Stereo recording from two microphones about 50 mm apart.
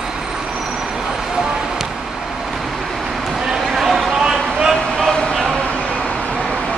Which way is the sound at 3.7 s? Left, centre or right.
Centre.